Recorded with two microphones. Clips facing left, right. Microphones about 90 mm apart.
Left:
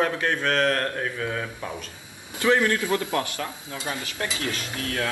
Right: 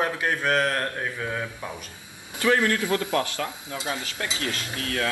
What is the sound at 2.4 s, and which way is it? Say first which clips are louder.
Speech: left 1 dB; 25° left (ahead or behind).